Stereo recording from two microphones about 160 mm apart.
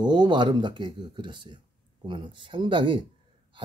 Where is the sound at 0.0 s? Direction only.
25° right (ahead or behind).